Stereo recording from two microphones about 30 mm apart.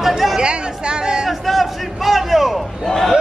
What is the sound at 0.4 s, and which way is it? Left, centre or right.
Chatter, right.